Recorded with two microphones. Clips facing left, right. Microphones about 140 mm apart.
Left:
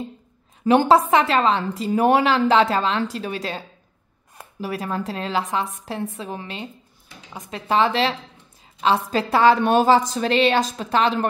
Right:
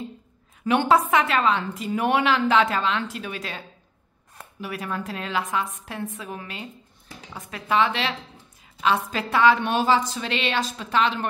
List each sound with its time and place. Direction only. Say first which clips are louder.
0.7 s a woman's voice: left 4 dB; 35° left (ahead or behind)